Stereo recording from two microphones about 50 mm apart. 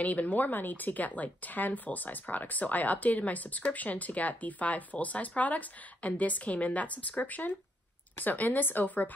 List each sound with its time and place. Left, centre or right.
0.0 s speech: left